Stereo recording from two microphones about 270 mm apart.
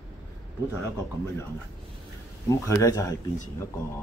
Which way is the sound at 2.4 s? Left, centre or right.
Centre.